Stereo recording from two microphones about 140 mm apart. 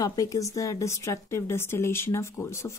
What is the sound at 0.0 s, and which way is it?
A woman's voice, 25° left (ahead or behind).